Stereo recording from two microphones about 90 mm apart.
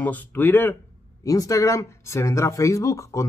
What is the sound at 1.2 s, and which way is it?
Speech, 40° left (ahead or behind).